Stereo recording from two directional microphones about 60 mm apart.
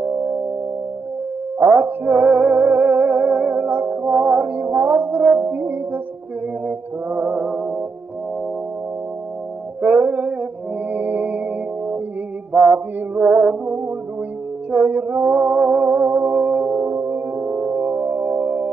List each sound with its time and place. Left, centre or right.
1.6 s music: right
7.1 s music: right
9.8 s music: right
12.5 s mantra: centre
13.1 s music: right
17.5 s music: right